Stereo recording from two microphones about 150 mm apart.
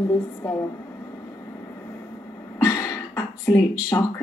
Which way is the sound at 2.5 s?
25° left (ahead or behind).